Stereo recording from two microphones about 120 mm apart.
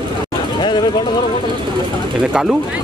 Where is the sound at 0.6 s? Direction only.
40° left (ahead or behind).